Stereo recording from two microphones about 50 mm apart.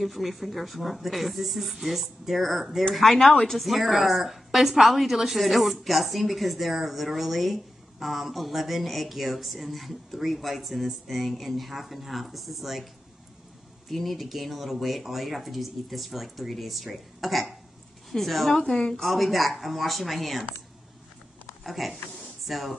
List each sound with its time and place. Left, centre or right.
0.0 s a woman's voice: centre
13.8 s a woman's voice: centre
18.6 s speech: centre
19.0 s a woman's voice: centre
21.6 s a woman's voice: centre